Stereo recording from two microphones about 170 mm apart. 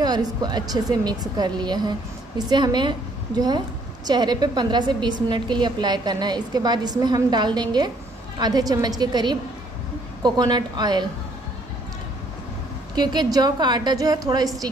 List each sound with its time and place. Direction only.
0.0 s a woman's voice: 25° right (ahead or behind)
12.9 s a woman's voice: 25° right (ahead or behind)